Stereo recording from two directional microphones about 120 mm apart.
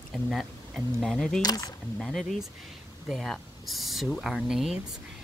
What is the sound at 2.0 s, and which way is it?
Speech, centre (ahead or behind).